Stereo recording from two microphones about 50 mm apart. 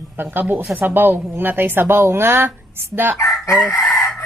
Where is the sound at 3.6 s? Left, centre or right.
Centre.